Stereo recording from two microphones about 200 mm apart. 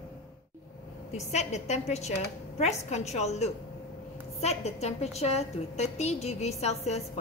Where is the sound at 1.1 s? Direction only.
35° left (ahead or behind).